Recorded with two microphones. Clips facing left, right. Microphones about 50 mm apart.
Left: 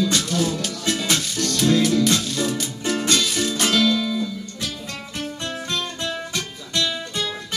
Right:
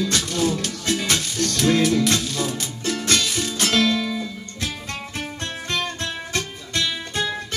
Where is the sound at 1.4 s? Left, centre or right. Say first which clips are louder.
Right 1 dB; right.